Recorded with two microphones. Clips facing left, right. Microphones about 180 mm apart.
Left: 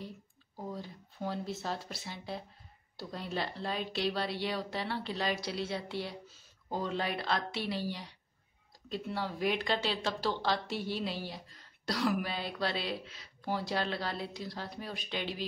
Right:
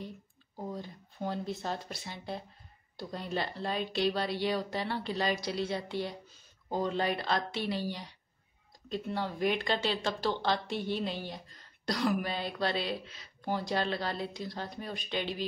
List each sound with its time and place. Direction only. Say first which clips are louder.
0.7 s a woman's voice: right 2 dB; centre (ahead or behind)